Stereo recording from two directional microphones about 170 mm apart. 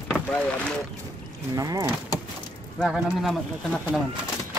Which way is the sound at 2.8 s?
Centre (ahead or behind).